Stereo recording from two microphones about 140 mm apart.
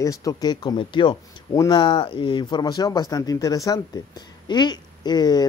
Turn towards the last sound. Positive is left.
turn(degrees=30)  # may be behind; listen again after turning